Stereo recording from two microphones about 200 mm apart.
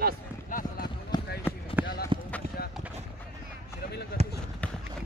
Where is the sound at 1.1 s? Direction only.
20° left (ahead or behind).